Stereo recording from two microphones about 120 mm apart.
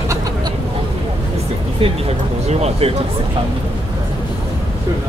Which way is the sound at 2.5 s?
60° right (ahead or behind).